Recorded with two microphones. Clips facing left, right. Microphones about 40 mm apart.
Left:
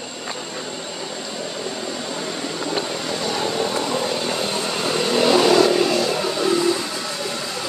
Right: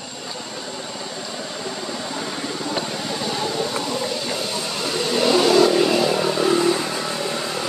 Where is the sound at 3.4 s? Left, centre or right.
Left.